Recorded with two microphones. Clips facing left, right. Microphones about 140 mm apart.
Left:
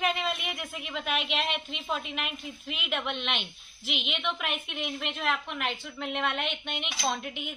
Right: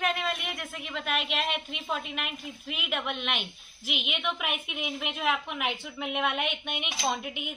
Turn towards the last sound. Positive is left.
turn(degrees=-10)  # may be behind; listen again after turning